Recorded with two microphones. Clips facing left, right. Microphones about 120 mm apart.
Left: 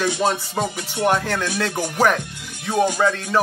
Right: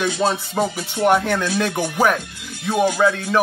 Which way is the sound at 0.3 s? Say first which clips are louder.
Right 2 dB; 10° right (ahead or behind).